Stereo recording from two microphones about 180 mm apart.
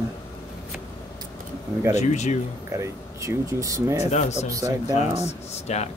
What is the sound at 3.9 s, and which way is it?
Speech, 40° left (ahead or behind).